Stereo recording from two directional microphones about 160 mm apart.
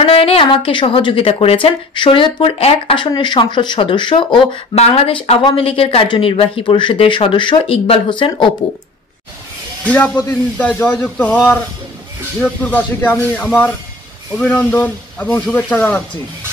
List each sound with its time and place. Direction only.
0.0 s a woman's voice: 35° left (ahead or behind)
9.8 s speech: 10° left (ahead or behind)